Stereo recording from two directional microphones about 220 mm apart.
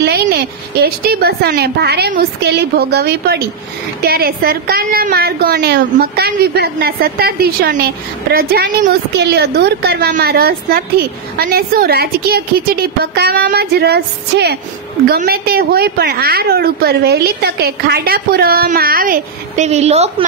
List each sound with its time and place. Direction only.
0.0 s a woman's voice: 50° right (ahead or behind); by 20.2 s 30° right (ahead or behind)